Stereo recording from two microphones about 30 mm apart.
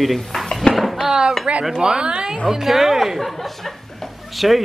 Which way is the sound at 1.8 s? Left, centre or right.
Right.